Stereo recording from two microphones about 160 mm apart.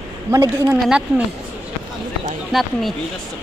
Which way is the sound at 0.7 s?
5° right (ahead or behind).